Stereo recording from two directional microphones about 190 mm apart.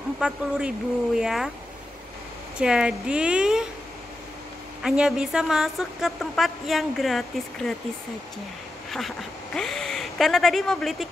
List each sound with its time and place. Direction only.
0.2 s a woman's voice: 5° right (ahead or behind)
2.6 s a woman's voice: 5° right (ahead or behind)
4.8 s a woman's voice: 5° right (ahead or behind)
8.9 s speech: centre (ahead or behind)